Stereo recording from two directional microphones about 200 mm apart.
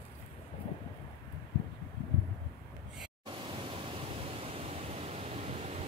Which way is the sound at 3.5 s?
25° right (ahead or behind).